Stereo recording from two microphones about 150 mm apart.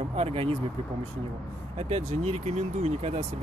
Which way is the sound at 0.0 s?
45° right (ahead or behind).